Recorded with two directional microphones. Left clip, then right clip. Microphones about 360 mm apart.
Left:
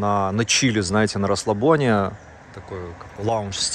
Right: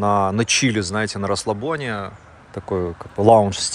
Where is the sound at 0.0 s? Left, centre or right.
Centre.